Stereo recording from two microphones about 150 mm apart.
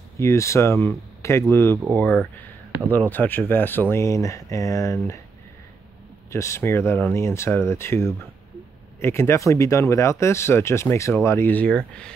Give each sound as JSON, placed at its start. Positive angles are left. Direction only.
{"t": 0.2, "sound": "speech", "side_deg": 20}
{"t": 6.3, "sound": "speech", "side_deg": 20}